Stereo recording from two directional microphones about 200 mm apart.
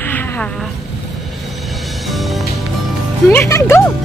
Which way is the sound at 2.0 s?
Centre (ahead or behind).